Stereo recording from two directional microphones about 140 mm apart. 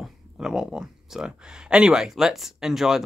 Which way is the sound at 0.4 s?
5° right (ahead or behind).